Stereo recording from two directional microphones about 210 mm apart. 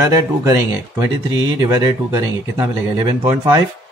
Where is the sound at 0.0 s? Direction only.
15° right (ahead or behind).